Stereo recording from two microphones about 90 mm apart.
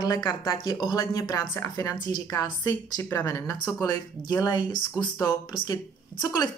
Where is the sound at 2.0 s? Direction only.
50° left (ahead or behind).